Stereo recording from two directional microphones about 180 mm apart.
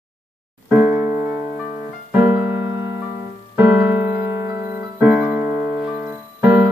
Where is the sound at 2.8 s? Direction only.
20° right (ahead or behind).